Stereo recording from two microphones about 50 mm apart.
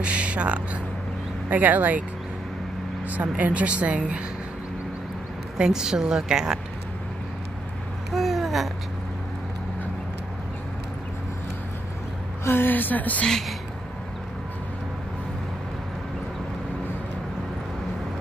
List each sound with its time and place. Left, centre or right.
0.0 s speech: right
3.1 s a woman's voice: right
5.6 s a woman's voice: centre
8.1 s babbling: centre
12.4 s a woman's voice: left